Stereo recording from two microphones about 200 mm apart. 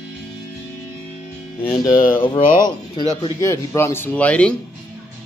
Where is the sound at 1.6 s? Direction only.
20° left (ahead or behind).